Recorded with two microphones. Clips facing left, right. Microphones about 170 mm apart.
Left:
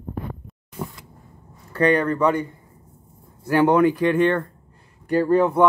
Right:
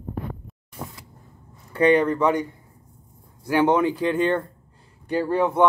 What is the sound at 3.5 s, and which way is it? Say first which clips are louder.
Speech: left 2 dB; 20° right (ahead or behind).